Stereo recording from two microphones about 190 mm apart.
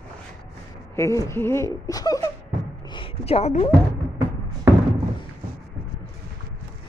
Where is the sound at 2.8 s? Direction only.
25° left (ahead or behind).